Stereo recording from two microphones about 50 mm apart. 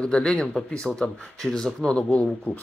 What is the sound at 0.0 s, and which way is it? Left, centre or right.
Speech, centre.